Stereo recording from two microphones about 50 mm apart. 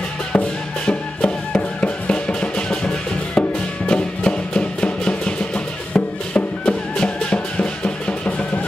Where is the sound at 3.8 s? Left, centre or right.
Centre.